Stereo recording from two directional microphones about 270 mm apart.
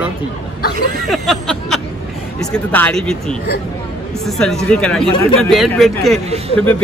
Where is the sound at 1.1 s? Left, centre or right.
Centre.